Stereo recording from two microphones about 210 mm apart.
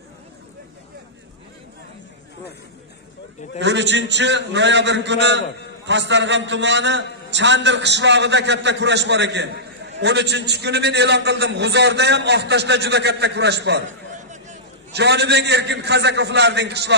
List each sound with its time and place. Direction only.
3.5 s a man's voice: 55° right (ahead or behind)
14.1 s a sound: 35° right (ahead or behind)
14.9 s a man's voice: 55° right (ahead or behind)